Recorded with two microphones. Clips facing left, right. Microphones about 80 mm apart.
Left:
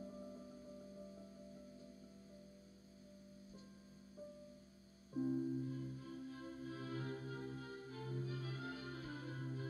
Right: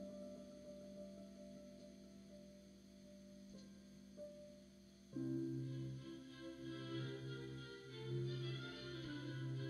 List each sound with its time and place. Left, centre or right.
0.0 s music: left
5.1 s music: left